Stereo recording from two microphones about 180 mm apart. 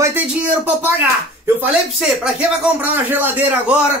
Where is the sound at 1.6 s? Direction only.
5° right (ahead or behind).